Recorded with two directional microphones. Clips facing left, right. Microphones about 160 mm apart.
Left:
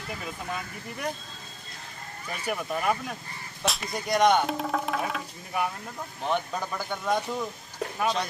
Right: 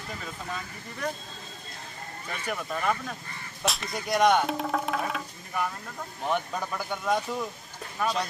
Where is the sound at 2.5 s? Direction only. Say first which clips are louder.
Left 2 dB; 5° left (ahead or behind).